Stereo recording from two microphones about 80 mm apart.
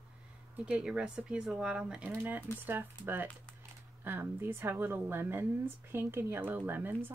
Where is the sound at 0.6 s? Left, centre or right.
Centre.